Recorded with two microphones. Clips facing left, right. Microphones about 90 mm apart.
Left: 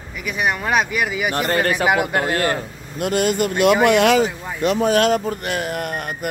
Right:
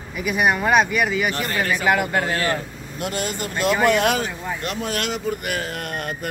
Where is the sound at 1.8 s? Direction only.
15° left (ahead or behind).